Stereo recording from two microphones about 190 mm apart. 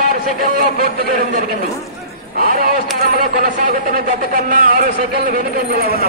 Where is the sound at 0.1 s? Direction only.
45° right (ahead or behind).